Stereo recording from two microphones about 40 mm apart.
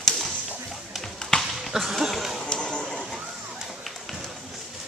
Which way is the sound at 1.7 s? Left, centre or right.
Centre.